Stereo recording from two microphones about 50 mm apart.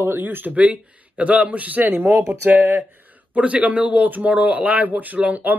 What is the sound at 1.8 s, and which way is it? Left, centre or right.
Speech, right.